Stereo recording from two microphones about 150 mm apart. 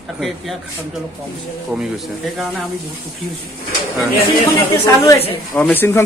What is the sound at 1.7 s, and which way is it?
Speech, centre (ahead or behind).